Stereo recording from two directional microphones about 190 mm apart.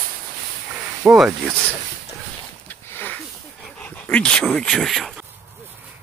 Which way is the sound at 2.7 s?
10° left (ahead or behind).